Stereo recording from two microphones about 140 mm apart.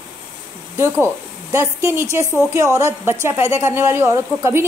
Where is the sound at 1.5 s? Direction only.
20° right (ahead or behind).